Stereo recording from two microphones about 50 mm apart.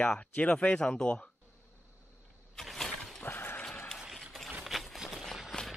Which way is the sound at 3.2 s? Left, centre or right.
Left.